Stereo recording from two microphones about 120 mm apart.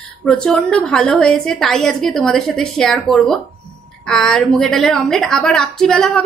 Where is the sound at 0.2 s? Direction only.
10° left (ahead or behind).